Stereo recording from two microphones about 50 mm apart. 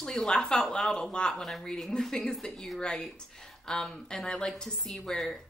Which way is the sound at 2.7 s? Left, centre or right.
Centre.